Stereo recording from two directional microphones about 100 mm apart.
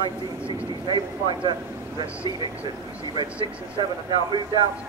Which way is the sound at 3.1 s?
50° right (ahead or behind).